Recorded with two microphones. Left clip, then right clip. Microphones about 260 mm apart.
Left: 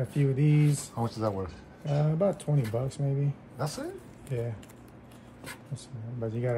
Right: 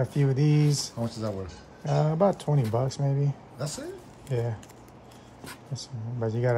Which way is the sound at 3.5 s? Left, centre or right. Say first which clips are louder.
Left 2 dB; centre.